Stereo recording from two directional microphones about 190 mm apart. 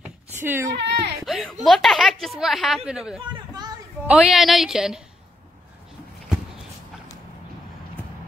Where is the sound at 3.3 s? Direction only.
20° right (ahead or behind).